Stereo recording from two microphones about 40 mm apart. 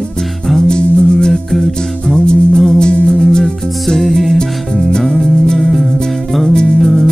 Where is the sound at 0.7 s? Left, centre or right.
Left.